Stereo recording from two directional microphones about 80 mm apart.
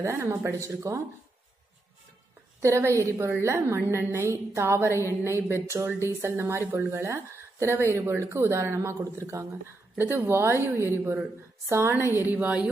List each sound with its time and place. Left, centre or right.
0.0 s a woman's voice: right
2.6 s a woman's voice: right
12.0 s a woman's voice: left
12.3 s speech: centre